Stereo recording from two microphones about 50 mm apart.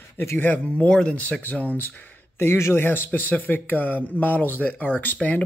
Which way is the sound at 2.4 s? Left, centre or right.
Left.